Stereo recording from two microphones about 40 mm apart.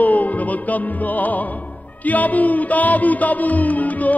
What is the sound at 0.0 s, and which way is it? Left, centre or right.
Music, left.